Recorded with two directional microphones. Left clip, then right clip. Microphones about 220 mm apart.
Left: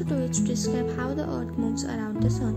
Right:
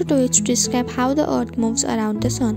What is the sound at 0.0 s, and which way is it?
Speech, 35° right (ahead or behind).